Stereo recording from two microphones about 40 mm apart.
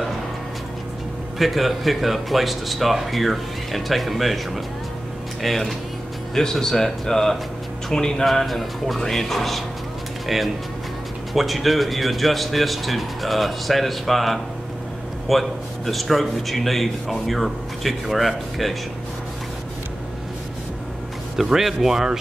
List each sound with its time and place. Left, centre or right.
1.4 s a man's voice: centre
5.4 s a man's voice: centre
8.3 s a man's voice: centre
21.4 s speech: centre